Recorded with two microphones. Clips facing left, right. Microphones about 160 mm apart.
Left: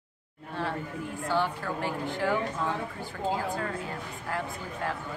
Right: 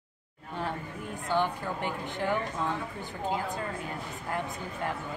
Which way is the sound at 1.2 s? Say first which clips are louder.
Even; 20° right (ahead or behind).